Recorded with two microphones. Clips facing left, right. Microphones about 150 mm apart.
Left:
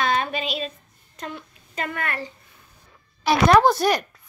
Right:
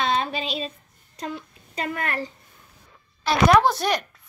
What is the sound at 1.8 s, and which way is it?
Speech, 35° right (ahead or behind).